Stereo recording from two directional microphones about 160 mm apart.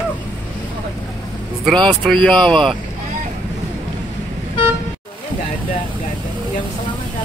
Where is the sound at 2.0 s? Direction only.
Centre (ahead or behind).